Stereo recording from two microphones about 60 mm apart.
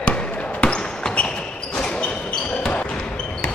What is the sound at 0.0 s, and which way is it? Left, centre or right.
Basketball bounce, centre.